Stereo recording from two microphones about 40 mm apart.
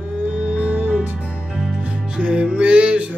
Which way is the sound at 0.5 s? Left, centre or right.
Right.